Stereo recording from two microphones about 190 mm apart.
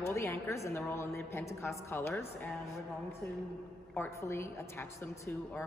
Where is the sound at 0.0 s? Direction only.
15° left (ahead or behind).